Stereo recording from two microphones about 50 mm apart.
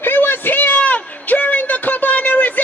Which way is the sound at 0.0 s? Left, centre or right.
Left.